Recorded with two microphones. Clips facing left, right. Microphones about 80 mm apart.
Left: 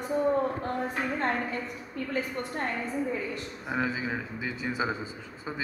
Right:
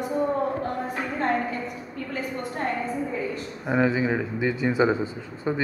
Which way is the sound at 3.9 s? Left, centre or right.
Right.